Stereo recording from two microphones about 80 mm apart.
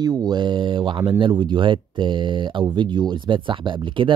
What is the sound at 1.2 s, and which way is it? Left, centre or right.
Speech, right.